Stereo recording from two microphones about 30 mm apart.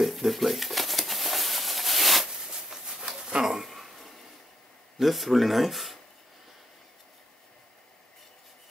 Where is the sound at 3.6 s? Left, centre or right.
Centre.